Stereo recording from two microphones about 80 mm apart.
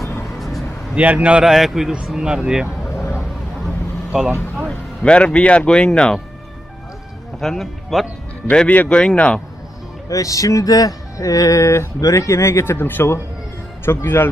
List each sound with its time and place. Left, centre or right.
0.9 s speech: centre
2.8 s vehicle: left
3.2 s vehicle: centre
4.6 s speech: centre
7.3 s speech: centre
8.5 s speech: centre
10.0 s speech: left